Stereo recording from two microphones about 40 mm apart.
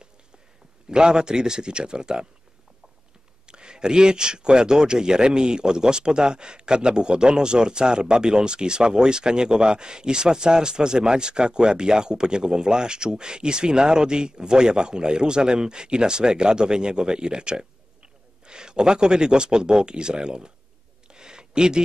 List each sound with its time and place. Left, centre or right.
0.8 s speech: centre
3.4 s speech: right
21.1 s a sound: centre